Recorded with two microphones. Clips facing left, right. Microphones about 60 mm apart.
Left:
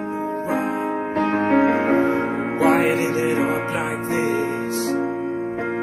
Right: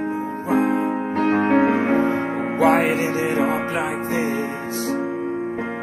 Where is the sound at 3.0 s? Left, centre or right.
Right.